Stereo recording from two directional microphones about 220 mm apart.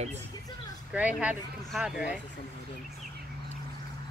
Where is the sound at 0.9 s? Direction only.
5° right (ahead or behind).